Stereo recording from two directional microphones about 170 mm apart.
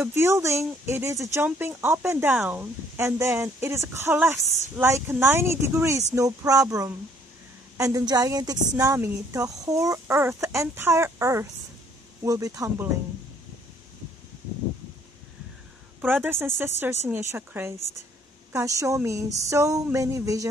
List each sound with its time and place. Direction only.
0.0 s speech: 15° right (ahead or behind)
16.0 s speech: 10° right (ahead or behind)